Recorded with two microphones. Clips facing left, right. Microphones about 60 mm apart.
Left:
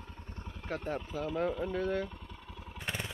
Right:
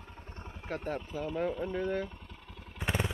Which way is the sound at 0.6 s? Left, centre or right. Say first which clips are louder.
Even; centre.